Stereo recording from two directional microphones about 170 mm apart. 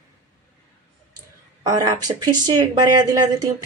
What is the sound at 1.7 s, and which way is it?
Speech, 25° right (ahead or behind).